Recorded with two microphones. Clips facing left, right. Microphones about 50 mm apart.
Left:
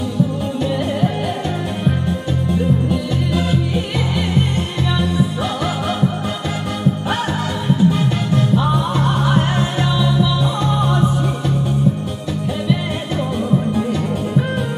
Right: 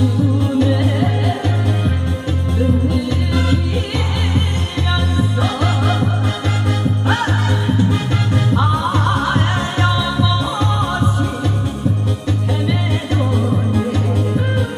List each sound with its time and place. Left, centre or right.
2.9 s music: centre
7.6 s music: centre